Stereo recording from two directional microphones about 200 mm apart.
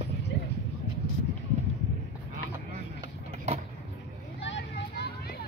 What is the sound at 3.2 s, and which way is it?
Vehicle, 35° right (ahead or behind).